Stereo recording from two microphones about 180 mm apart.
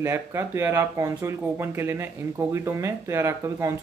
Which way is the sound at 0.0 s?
15° right (ahead or behind).